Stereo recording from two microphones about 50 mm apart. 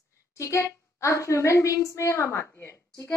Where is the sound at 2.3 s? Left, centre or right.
Left.